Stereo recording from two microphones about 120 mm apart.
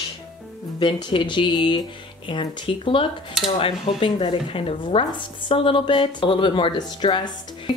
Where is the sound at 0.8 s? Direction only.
40° left (ahead or behind).